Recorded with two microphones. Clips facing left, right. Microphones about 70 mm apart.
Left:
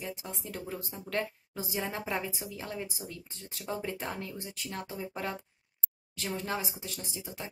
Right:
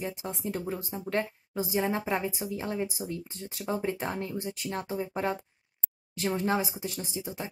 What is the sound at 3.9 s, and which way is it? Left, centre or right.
Speech, right.